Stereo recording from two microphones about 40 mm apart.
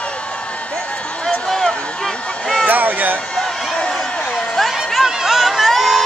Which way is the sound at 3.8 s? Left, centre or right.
Centre.